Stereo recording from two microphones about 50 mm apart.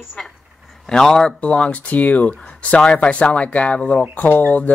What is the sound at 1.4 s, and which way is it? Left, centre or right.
Speech, left.